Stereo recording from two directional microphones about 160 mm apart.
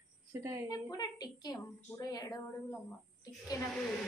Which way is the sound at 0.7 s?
25° left (ahead or behind).